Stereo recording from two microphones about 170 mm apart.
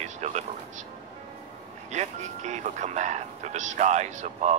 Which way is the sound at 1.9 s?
45° right (ahead or behind).